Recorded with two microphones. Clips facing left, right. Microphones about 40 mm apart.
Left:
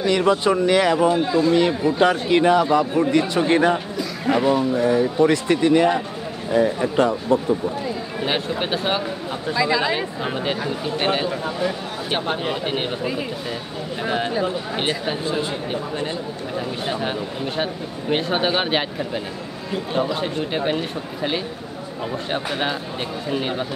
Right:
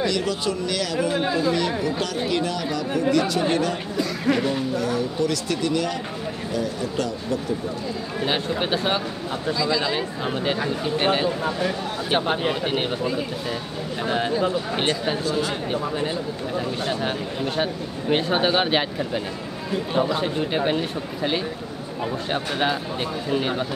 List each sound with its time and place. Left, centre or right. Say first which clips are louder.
0.0 s speech: left 6 dB; left
4.3 s speech: left 6 dB; centre
8.2 s speech: even; centre
9.5 s speech: left 3 dB; left
9.9 s speech: left 1 dB; centre
14.0 s speech: even; centre
15.2 s speech: left 1 dB; left
17.0 s speech: left 1 dB; centre